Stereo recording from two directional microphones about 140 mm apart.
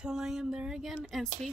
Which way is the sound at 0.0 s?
5° right (ahead or behind).